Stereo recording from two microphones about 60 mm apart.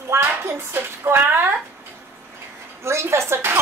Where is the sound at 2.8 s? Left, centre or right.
Right.